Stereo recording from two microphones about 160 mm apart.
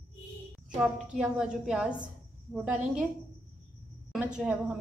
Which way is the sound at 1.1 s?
5° right (ahead or behind).